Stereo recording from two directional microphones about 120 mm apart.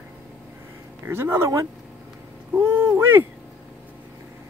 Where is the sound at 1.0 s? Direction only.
20° right (ahead or behind).